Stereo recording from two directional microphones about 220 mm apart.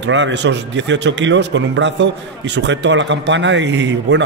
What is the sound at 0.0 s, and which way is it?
A man's voice, 55° right (ahead or behind).